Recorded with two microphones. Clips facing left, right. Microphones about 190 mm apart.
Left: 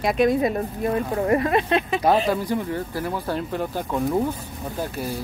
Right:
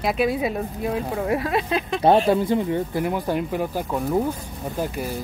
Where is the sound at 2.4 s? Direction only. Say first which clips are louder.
Right 4 dB; 20° right (ahead or behind).